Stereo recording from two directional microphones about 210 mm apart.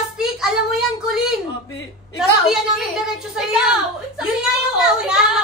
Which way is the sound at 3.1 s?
5° right (ahead or behind).